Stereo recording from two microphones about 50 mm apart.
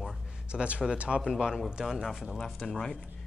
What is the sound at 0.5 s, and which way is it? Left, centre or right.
Speech, right.